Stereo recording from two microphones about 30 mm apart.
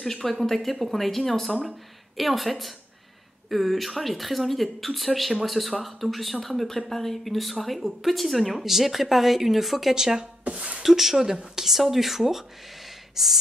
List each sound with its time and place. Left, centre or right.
0.0 s speech: centre
9.9 s speech: centre
10.5 s speech: right
10.8 s speech: centre
13.1 s sigh: centre